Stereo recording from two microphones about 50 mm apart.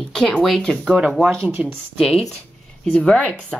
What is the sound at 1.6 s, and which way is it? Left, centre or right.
Speech, centre.